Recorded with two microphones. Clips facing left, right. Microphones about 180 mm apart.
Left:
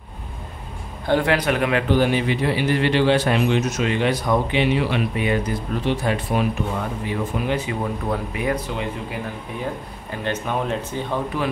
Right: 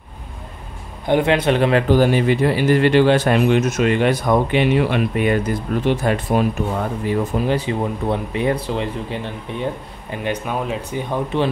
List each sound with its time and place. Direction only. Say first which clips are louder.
1.0 s a man's voice: right 3 dB; 20° right (ahead or behind); by 6.4 s 50° right (ahead or behind)
7.1 s speech: right 5 dB; 35° right (ahead or behind)
10.2 s speech: right 1 dB; 10° right (ahead or behind)